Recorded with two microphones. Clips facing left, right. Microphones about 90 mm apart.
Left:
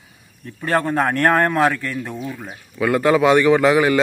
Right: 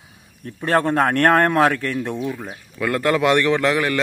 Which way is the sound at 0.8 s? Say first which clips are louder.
Right 1 dB; 10° left (ahead or behind).